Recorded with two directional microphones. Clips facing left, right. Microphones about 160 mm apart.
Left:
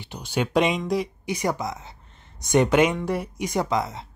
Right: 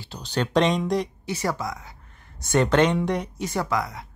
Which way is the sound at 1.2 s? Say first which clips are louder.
Left 1 dB; 15° left (ahead or behind).